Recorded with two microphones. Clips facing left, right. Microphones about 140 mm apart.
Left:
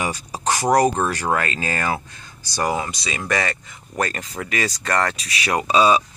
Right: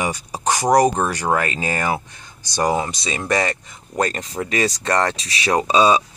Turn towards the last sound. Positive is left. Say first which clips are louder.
# right 1 dB
turn(degrees=-20)  # may be behind; listen again after turning